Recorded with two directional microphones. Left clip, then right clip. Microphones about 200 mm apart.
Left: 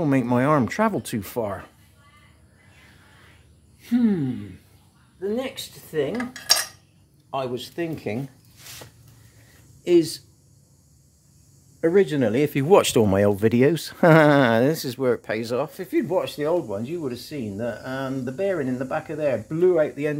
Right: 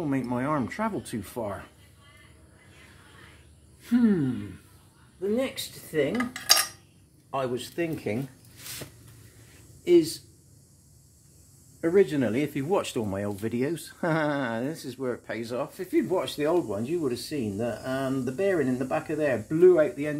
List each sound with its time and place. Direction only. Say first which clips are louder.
0.0 s speech: left 8 dB; 55° left (ahead or behind)
3.8 s speech: left 2 dB; 30° left (ahead or behind)
5.3 s speech: right 1 dB; 30° left (ahead or behind)
6.1 s cutlery: left 1 dB; 10° left (ahead or behind)
7.2 s speech: left 2 dB; 30° left (ahead or behind)
9.8 s speech: left 2 dB; 45° left (ahead or behind)
11.8 s speech: left 4 dB; 45° left (ahead or behind); by 19.7 s 20° left (ahead or behind)
19.7 s speech: left 2 dB; 45° left (ahead or behind)